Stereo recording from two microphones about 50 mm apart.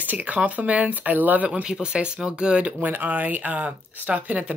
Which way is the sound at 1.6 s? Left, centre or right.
Centre.